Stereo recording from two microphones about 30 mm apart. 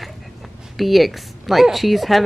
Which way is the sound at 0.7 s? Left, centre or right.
Centre.